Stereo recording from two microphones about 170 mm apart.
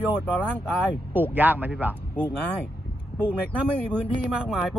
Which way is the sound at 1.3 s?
10° right (ahead or behind).